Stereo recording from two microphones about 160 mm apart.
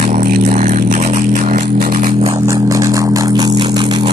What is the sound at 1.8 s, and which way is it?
Music, 60° right (ahead or behind).